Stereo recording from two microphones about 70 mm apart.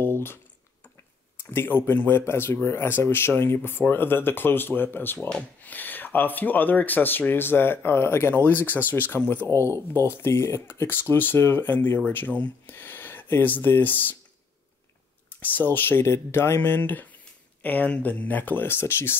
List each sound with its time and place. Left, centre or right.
0.0 s a sound: left
1.4 s speech: left
9.5 s speech: left; by 12.7 s centre
12.7 s speech: left
15.4 s speech: left